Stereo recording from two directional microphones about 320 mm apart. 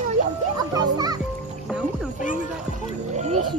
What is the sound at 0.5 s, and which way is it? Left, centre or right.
Music, centre.